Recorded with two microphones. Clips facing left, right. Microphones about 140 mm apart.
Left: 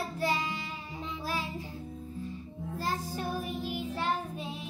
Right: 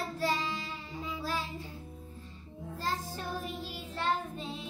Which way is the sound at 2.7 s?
15° left (ahead or behind).